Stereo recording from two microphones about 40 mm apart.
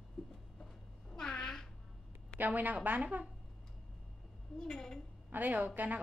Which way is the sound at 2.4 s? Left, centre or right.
Right.